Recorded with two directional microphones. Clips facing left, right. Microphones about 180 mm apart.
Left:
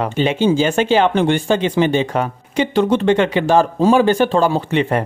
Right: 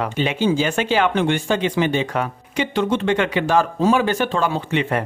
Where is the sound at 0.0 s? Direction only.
30° left (ahead or behind).